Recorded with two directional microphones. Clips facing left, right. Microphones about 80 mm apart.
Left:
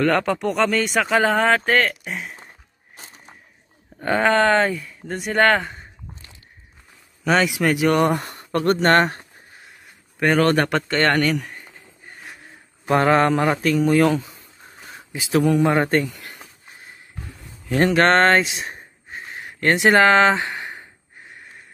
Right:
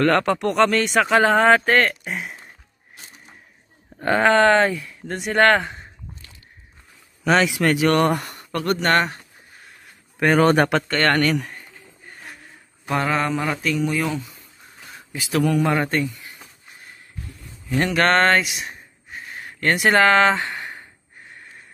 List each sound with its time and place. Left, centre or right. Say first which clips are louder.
0.0 s speech: right 1 dB; centre
4.0 s speech: right 2 dB; centre
7.2 s speech: right 1 dB; centre
8.1 s speech: left 2 dB; left
10.1 s a man's voice: right 1 dB; centre
10.4 s speech: right 3 dB; centre
10.9 s speech: even; centre
12.8 s speech: left 5 dB; left
16.1 s speech: left 1 dB; left
17.6 s speech: left 3 dB; left
19.1 s a sound: left 1 dB; left